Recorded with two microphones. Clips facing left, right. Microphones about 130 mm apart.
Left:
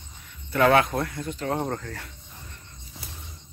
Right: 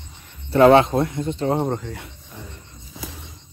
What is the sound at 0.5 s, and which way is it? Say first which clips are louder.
Speech: right 7 dB; 25° right (ahead or behind).